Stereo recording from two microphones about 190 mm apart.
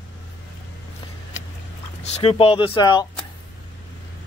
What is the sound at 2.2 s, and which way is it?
Speech, 30° left (ahead or behind).